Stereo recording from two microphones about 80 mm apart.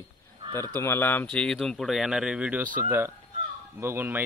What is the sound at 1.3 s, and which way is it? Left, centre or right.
Speech, centre.